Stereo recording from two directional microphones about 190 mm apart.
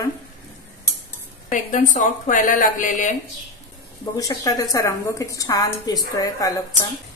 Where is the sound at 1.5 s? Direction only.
40° left (ahead or behind).